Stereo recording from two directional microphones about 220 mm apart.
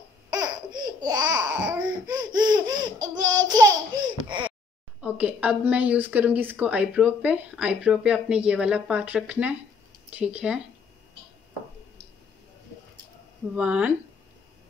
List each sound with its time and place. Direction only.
0.3 s laughter: 20° right (ahead or behind)
5.0 s a woman's voice: 5° right (ahead or behind)
13.6 s a woman's voice: 5° right (ahead or behind)